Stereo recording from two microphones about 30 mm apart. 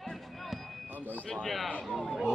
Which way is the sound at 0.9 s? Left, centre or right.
Right.